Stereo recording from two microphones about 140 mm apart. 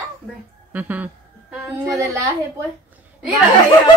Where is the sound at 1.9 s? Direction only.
20° right (ahead or behind).